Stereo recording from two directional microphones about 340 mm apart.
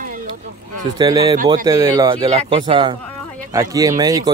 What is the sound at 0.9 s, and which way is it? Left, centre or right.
Speech, centre.